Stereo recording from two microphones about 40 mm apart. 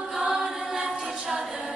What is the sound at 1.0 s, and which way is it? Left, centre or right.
A capella, centre.